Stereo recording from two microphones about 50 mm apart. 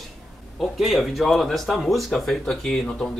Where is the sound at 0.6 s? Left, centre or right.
Centre.